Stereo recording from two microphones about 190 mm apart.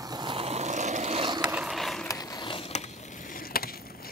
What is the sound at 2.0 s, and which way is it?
Skateboard, 20° left (ahead or behind).